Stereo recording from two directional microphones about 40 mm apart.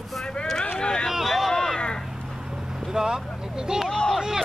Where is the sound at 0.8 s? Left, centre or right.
Centre.